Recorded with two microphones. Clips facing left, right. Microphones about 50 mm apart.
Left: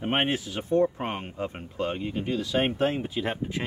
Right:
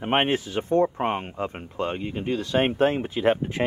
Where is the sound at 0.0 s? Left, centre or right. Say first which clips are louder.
Right 4 dB; right.